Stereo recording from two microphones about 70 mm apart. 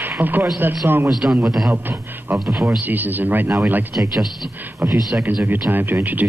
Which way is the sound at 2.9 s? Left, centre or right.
Right.